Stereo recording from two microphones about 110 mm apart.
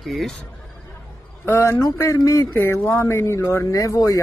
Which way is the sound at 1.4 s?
20° left (ahead or behind).